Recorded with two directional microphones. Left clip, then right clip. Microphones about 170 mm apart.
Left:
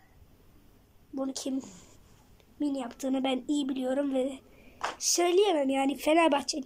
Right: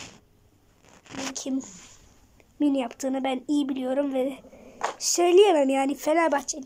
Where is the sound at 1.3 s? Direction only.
Centre (ahead or behind).